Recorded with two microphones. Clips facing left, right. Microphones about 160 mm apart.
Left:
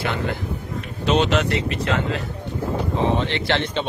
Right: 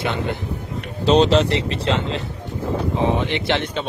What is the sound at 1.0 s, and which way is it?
Speech, 35° right (ahead or behind).